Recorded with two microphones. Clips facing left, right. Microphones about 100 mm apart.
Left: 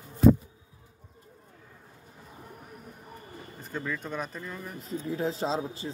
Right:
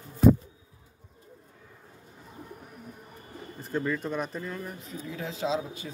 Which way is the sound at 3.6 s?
5° right (ahead or behind).